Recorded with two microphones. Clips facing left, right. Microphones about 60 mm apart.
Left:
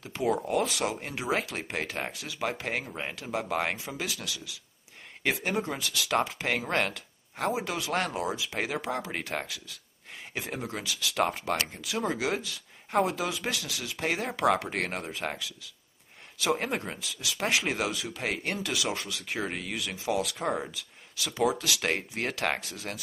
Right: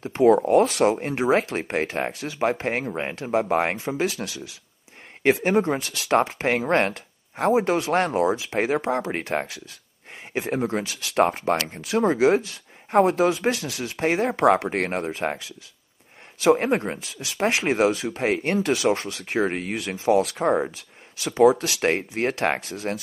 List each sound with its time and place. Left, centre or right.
0.0 s speech: right